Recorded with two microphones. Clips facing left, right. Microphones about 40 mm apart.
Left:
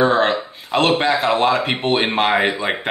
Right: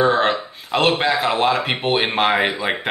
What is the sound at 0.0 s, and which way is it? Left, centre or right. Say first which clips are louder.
Speech: left 1 dB; centre.